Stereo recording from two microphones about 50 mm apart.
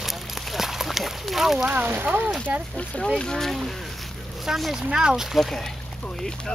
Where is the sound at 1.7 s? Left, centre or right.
Right.